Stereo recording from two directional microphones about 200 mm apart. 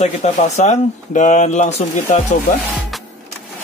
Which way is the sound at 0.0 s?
35° left (ahead or behind).